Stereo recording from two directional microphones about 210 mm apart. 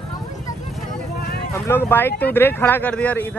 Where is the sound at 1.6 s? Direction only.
10° left (ahead or behind).